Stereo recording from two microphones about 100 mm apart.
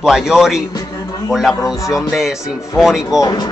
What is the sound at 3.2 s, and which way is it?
Speech, 35° left (ahead or behind).